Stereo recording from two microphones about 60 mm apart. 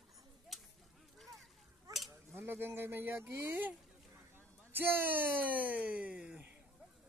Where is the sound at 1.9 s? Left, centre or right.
Right.